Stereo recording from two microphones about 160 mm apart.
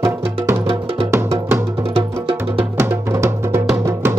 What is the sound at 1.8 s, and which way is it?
Music, 35° right (ahead or behind).